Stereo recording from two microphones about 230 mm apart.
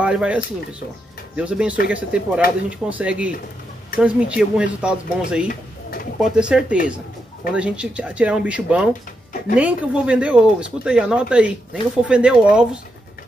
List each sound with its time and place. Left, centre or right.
0.0 s speech: centre
5.5 s pigeon: left
6.2 s speech: centre